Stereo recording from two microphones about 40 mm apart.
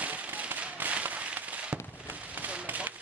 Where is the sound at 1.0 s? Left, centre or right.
Right.